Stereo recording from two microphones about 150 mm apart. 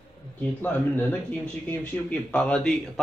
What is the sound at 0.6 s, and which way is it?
A man's voice, 15° left (ahead or behind).